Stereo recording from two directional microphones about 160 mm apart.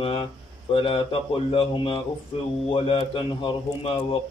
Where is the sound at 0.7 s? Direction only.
35° left (ahead or behind).